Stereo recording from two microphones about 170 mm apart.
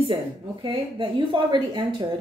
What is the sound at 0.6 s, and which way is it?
A woman's voice, 30° right (ahead or behind).